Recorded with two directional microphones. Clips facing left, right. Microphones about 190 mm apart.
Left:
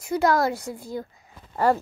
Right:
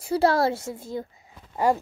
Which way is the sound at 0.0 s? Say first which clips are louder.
Right 1 dB; 30° right (ahead or behind).